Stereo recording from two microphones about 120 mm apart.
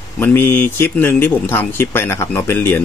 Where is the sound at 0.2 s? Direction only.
20° left (ahead or behind).